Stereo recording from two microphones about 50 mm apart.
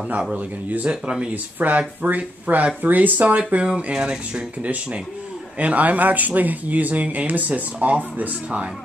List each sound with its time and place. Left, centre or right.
0.4 s speech: right
0.8 s speech: centre
1.3 s speech: right
3.3 s speech: right
4.6 s speech: right